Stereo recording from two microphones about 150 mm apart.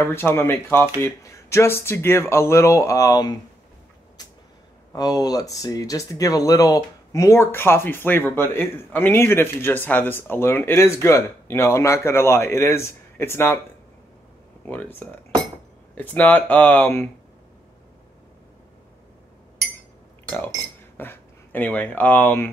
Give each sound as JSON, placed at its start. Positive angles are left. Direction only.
{"t": 0.0, "sound": "speech", "side_deg": 15}
{"t": 4.9, "sound": "speech", "side_deg": 25}
{"t": 14.6, "sound": "speech", "side_deg": 10}
{"t": 21.0, "sound": "speech", "side_deg": 10}